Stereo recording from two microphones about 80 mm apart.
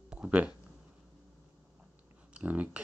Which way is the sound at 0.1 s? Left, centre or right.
Centre.